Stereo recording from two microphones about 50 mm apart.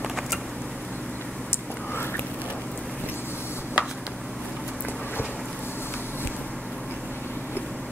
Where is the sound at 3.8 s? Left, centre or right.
Right.